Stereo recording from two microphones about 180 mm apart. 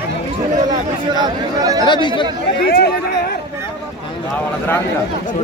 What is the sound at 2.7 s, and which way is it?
Speech, 60° left (ahead or behind).